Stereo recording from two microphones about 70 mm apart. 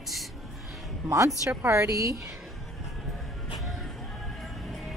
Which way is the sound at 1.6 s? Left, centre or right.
Right.